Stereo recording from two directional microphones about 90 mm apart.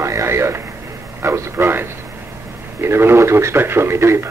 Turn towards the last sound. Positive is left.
turn(degrees=-30)  # may be behind; listen again after turning